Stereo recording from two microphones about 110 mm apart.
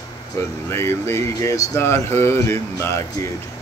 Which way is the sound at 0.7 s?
25° left (ahead or behind).